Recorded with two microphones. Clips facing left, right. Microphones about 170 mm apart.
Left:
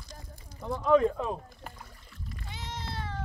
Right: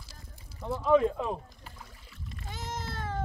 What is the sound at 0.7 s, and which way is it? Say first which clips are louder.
Speech: left 1 dB; 5° right (ahead or behind).